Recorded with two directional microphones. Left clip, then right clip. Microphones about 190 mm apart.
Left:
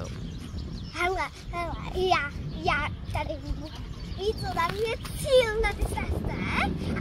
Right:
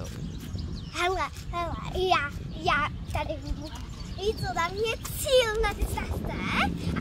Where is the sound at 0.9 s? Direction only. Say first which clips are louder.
Even; 10° right (ahead or behind).